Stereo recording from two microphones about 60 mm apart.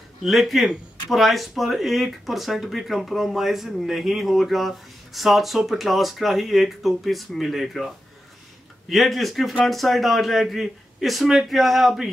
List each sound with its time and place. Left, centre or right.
0.2 s speech: centre